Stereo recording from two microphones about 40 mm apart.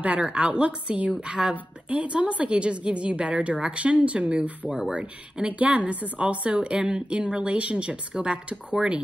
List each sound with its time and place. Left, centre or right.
0.2 s a woman's voice: right
4.6 s speech: centre
5.5 s a woman's voice: right